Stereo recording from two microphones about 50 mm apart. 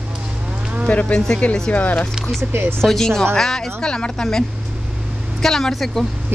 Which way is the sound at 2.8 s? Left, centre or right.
Centre.